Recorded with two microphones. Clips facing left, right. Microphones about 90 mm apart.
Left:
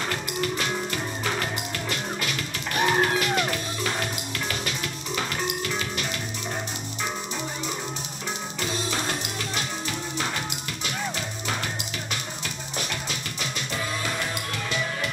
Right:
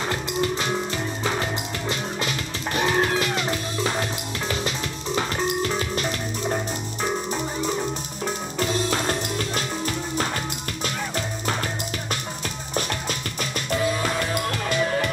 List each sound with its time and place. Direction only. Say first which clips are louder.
0.1 s music: right 3 dB; 25° right (ahead or behind)
2.7 s music: right 1 dB; 25° right (ahead or behind)
8.5 s music: right 6 dB; 40° right (ahead or behind)